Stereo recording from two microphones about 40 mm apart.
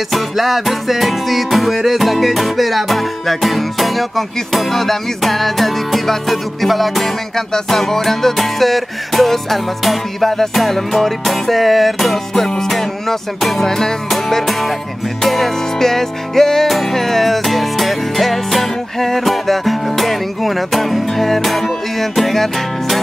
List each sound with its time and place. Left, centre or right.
0.1 s music: centre